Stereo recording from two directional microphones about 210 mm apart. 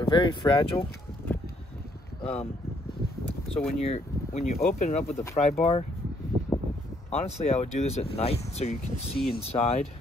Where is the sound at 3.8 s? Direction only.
30° left (ahead or behind).